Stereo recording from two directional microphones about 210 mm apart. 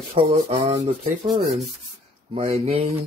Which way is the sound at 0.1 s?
30° right (ahead or behind).